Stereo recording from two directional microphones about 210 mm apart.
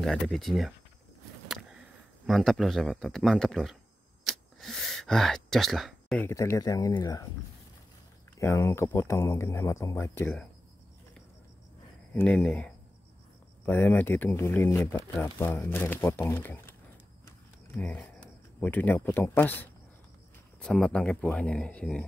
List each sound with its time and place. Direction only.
0.0 s speech: centre (ahead or behind)
2.2 s speech: centre (ahead or behind)
4.2 s a sound: centre (ahead or behind)
6.2 s speech: 15° left (ahead or behind)
8.4 s speech: 15° left (ahead or behind)
12.1 s speech: 5° left (ahead or behind)
17.7 s speech: 5° left (ahead or behind)